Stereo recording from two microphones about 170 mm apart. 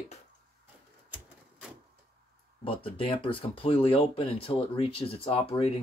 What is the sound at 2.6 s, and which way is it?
Speech, 30° left (ahead or behind).